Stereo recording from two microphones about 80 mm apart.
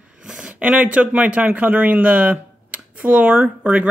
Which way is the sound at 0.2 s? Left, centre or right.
Centre.